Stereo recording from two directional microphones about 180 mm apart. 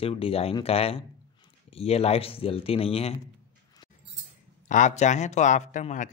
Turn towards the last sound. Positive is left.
turn(degrees=45)  # may be behind; listen again after turning